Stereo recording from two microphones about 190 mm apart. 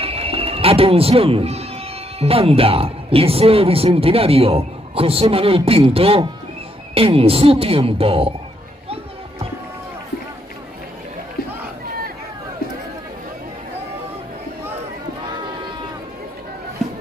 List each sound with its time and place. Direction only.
0.0 s music: 30° right (ahead or behind)
2.1 s a man's voice: 30° right (ahead or behind)
8.8 s music: 30° right (ahead or behind)